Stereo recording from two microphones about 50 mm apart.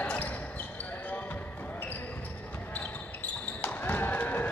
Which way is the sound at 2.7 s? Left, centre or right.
Left.